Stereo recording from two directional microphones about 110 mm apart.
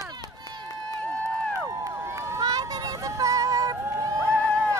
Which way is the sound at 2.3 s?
35° right (ahead or behind).